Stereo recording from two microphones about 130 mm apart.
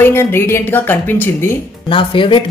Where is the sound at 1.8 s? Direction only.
40° left (ahead or behind).